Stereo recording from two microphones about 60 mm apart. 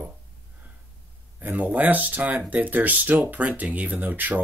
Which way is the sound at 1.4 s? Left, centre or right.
Right.